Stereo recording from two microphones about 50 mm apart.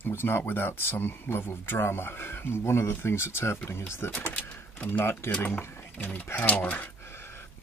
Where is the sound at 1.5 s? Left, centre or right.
Left.